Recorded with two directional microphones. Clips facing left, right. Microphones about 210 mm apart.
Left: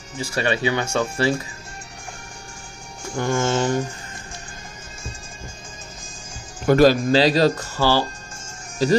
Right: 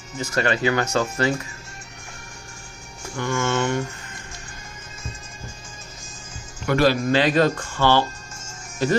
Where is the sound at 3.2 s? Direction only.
30° left (ahead or behind).